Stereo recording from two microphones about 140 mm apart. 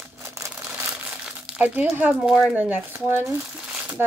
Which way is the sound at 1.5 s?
10° right (ahead or behind).